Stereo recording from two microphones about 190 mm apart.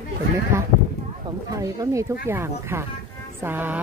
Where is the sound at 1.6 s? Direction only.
15° right (ahead or behind).